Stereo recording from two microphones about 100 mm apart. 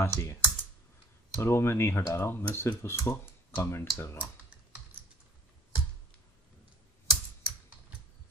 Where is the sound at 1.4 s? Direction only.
25° left (ahead or behind).